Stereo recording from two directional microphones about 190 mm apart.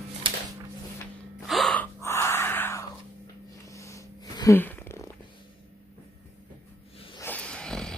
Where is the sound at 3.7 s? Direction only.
15° left (ahead or behind).